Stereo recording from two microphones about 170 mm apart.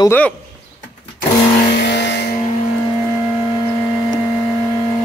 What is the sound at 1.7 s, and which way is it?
Vehicle, 80° left.